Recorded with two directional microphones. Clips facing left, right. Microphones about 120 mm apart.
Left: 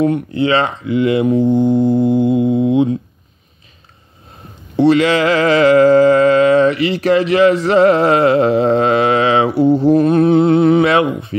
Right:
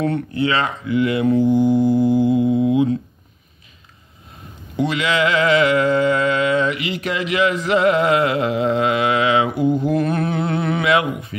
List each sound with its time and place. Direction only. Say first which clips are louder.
0.0 s speech: left 5 dB; 20° left (ahead or behind)
1.5 s mantra: left 2 dB; 25° left (ahead or behind)
4.7 s mantra: left 8 dB; 35° left (ahead or behind)
10.9 s speech: left 4 dB; 30° left (ahead or behind)